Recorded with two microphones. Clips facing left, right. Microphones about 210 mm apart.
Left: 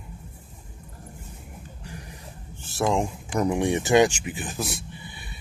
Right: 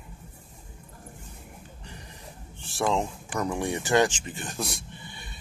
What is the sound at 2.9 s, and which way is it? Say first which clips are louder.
Speech: left 3 dB; 15° left (ahead or behind).